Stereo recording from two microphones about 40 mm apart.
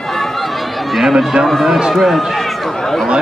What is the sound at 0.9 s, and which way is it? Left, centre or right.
Speech, centre.